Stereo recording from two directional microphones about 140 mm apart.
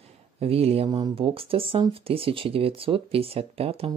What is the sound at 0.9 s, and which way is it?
Speech, 30° right (ahead or behind).